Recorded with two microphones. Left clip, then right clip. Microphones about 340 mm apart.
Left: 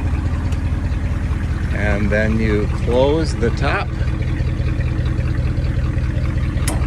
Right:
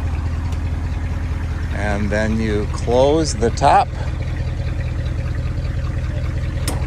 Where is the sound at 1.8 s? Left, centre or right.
Centre.